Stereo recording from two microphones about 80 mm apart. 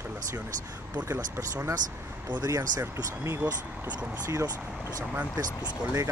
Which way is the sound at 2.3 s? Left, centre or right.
Right.